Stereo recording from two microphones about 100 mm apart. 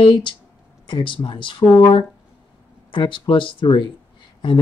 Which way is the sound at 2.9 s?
55° left (ahead or behind).